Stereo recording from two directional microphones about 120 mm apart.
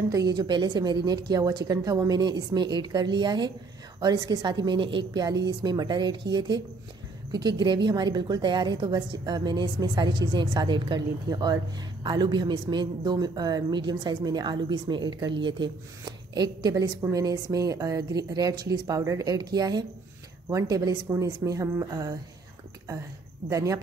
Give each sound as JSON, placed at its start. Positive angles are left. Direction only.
{"t": 0.1, "sound": "a woman's voice", "side_deg": -35}
{"t": 23.5, "sound": "a woman's voice", "side_deg": -30}